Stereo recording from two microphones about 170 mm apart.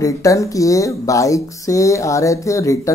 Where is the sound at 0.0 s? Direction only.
20° left (ahead or behind).